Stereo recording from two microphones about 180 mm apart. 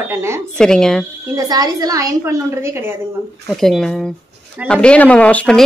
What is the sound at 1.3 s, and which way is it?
A woman's voice, 20° right (ahead or behind).